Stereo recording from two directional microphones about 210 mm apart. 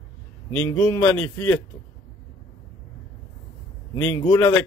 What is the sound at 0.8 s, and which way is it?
Speech, 10° left (ahead or behind).